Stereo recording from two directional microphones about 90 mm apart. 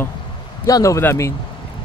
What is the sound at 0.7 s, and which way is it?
Speech, 35° left (ahead or behind).